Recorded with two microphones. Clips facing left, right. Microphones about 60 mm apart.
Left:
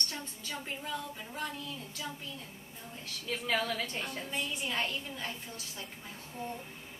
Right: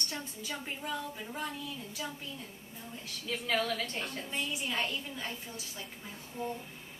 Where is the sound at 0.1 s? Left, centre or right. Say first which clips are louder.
Right 1 dB; centre.